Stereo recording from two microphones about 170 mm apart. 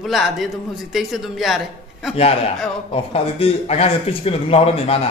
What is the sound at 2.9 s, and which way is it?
A man's voice, 35° left (ahead or behind).